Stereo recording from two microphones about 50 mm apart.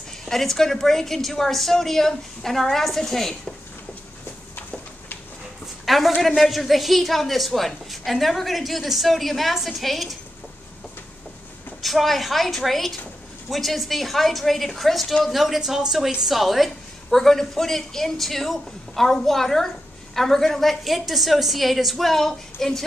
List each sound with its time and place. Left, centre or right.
0.2 s a woman's voice: centre
5.9 s a woman's voice: centre
11.8 s a woman's voice: centre